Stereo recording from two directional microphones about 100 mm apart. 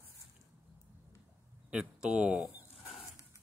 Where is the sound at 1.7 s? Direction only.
10° right (ahead or behind).